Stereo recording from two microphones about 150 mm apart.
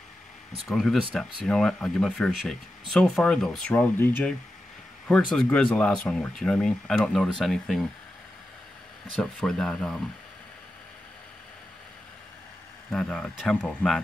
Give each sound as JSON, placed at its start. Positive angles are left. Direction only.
{"t": 0.7, "sound": "speech", "side_deg": 5}
{"t": 9.2, "sound": "speech", "side_deg": 5}
{"t": 12.9, "sound": "speech", "side_deg": 5}